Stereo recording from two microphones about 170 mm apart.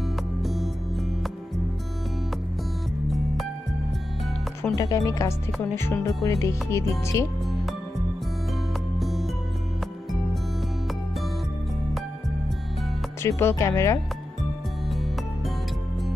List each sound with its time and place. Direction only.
0.4 s music: centre (ahead or behind)
4.7 s speech: 20° left (ahead or behind)
8.9 s music: centre (ahead or behind)
13.2 s speech: 15° left (ahead or behind)
14.9 s music: centre (ahead or behind)